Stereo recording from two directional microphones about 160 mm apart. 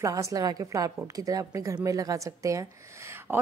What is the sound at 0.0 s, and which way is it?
Speech, 20° right (ahead or behind).